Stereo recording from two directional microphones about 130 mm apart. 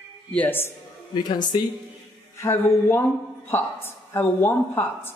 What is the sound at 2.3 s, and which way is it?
Speech, 20° left (ahead or behind).